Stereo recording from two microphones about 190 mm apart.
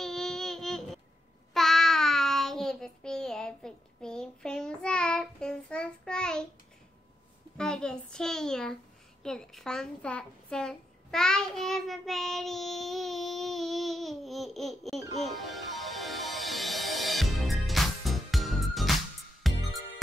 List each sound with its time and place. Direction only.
0.0 s child singing: centre (ahead or behind)
7.5 s a child's voice: 5° left (ahead or behind)
9.2 s a sound: 5° left (ahead or behind)
15.2 s music: centre (ahead or behind)